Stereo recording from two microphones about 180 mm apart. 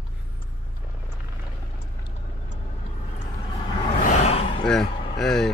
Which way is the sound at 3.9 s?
40° left (ahead or behind).